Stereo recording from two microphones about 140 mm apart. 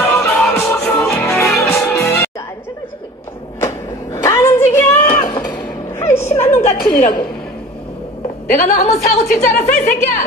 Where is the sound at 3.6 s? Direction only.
20° left (ahead or behind).